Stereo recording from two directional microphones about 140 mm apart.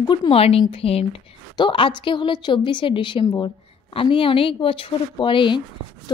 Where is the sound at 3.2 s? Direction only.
25° left (ahead or behind).